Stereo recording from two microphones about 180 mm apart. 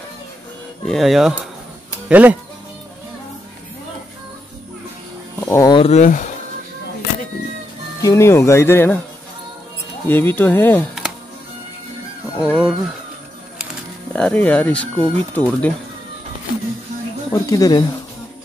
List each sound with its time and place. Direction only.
0.8 s speech: centre (ahead or behind)
5.4 s music: 15° left (ahead or behind)
5.8 s speech: 40° left (ahead or behind)
8.0 s speech: 15° left (ahead or behind)
10.0 s speech: 10° left (ahead or behind)
12.4 s speech: 5° right (ahead or behind)
14.1 s speech: 5° left (ahead or behind)
17.3 s speech: 20° left (ahead or behind)